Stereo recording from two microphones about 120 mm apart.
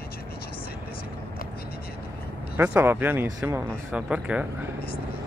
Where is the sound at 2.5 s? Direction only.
15° right (ahead or behind).